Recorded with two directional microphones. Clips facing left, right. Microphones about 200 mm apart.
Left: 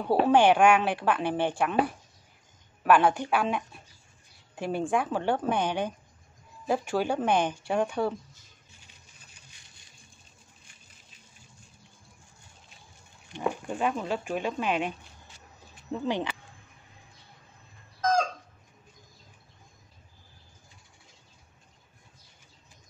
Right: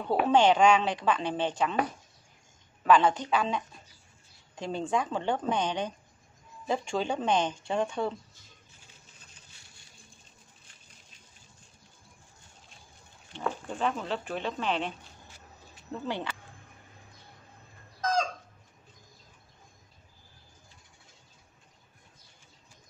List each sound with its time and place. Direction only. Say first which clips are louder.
0.3 s speech: left 1 dB; 10° left (ahead or behind)
2.8 s speech: left 1 dB; 10° left (ahead or behind)
9.3 s a sound: even; 15° left (ahead or behind)
13.3 s speech: left 3 dB; 15° left (ahead or behind)